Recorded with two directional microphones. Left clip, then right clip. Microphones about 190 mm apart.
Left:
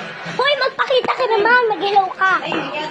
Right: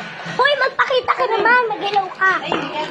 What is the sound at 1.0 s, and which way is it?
A child's voice, 20° left (ahead or behind).